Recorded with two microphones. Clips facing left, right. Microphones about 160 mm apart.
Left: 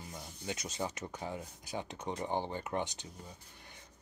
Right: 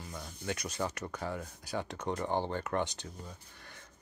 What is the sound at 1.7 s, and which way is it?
Speech, 70° right (ahead or behind).